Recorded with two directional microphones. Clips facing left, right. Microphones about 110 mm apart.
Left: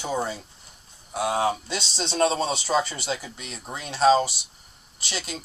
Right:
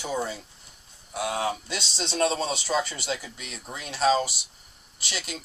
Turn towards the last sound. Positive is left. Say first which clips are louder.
# left 2 dB
turn(degrees=35)  # may be behind; listen again after turning